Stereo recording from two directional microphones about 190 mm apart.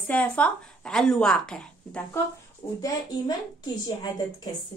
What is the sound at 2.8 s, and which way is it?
A woman's voice, 20° left (ahead or behind).